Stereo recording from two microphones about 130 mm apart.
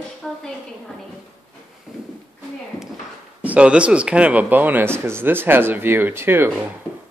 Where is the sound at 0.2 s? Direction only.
Centre (ahead or behind).